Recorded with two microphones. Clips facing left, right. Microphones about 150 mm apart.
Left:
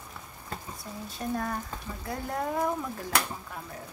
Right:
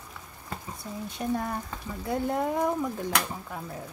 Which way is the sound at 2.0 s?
20° right (ahead or behind).